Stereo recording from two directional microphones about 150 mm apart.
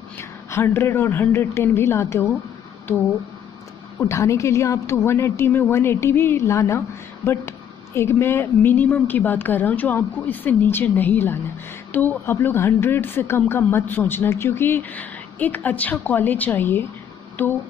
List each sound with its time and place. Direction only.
0.2 s speech: 15° left (ahead or behind)
4.0 s speech: 20° left (ahead or behind)